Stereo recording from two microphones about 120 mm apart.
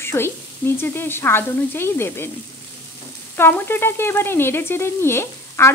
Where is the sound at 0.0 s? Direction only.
20° left (ahead or behind).